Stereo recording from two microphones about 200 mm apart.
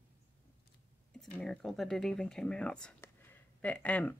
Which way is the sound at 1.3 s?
5° left (ahead or behind).